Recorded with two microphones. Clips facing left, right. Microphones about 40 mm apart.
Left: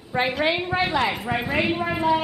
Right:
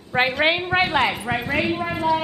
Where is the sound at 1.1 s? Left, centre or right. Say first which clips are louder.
Right 1 dB; centre.